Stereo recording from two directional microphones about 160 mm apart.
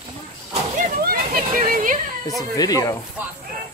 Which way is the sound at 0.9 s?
65° right (ahead or behind).